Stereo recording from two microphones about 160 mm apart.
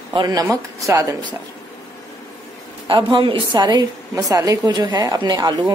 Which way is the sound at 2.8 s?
30° right (ahead or behind).